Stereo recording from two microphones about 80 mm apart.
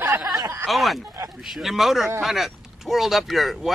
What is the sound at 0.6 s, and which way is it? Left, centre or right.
Speech, centre.